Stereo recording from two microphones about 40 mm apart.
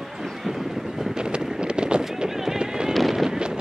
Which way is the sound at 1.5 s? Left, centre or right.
Right.